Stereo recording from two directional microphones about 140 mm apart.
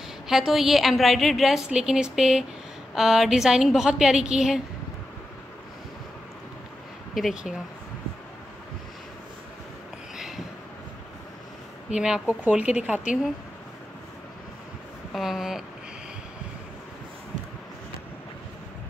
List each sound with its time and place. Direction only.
0.3 s a woman's voice: centre (ahead or behind)
7.2 s a woman's voice: centre (ahead or behind)
10.1 s a sound: 5° right (ahead or behind)
11.9 s speech: 5° right (ahead or behind)
15.1 s a woman's voice: centre (ahead or behind)